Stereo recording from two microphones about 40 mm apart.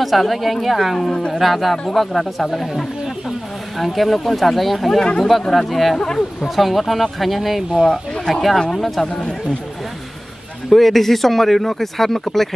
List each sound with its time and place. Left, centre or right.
0.0 s speech: centre
1.1 s speech: left
1.4 s speech: centre
5.0 s speech: centre
5.5 s speech: centre
10.7 s speech: centre